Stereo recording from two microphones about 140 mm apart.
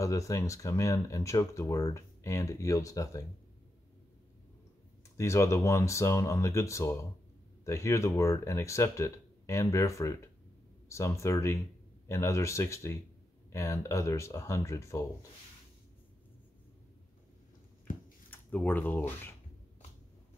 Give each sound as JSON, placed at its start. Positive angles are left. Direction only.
{"t": 0.0, "sound": "speech", "side_deg": 20}
{"t": 5.1, "sound": "speech", "side_deg": 20}
{"t": 18.3, "sound": "speech", "side_deg": 15}